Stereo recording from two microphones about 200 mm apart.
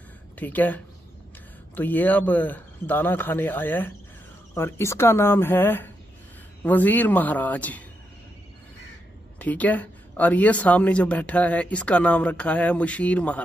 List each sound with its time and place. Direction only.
0.4 s speech: 10° left (ahead or behind)
9.4 s speech: 10° left (ahead or behind)